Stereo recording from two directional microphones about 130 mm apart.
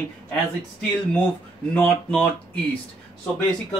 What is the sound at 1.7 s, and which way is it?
Speech, 15° left (ahead or behind).